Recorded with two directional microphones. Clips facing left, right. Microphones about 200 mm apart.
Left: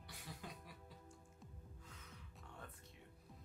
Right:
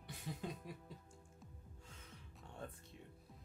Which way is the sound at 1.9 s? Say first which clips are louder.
Right 1 dB; 30° right (ahead or behind).